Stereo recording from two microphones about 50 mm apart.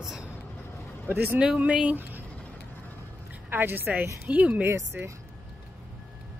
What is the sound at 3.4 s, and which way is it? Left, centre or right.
Speech, right.